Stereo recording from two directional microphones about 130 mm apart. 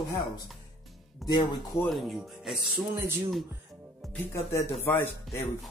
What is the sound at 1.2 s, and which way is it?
Speech, 35° left (ahead or behind).